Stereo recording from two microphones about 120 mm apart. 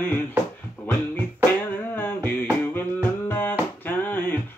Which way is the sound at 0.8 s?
15° left (ahead or behind).